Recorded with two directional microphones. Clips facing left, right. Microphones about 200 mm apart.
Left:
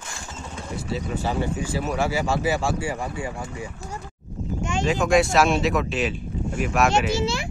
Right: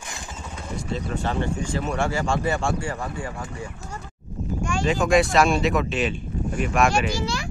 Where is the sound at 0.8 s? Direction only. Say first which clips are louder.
Even; 5° left (ahead or behind).